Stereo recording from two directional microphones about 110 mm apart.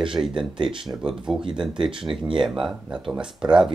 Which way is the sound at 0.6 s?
50° right (ahead or behind).